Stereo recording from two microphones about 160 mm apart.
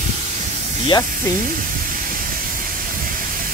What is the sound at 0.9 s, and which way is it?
Speech, 25° left (ahead or behind).